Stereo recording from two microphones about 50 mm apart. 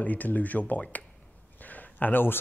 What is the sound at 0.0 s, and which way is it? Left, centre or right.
A man's voice, left.